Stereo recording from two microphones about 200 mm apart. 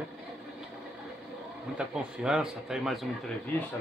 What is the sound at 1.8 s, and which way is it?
Speech, 5° right (ahead or behind).